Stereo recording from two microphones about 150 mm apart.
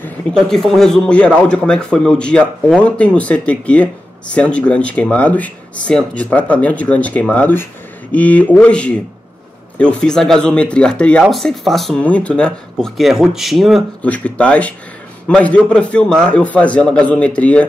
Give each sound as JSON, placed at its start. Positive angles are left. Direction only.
{"t": 0.0, "sound": "speech", "side_deg": 5}